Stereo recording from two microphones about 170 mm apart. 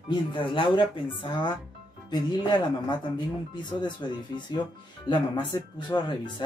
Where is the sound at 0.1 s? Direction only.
30° left (ahead or behind).